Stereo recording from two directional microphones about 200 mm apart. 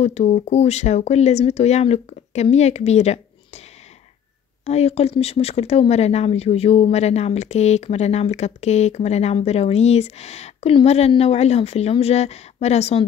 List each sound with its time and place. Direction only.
0.0 s speech: 35° left (ahead or behind)
4.6 s speech: 30° left (ahead or behind)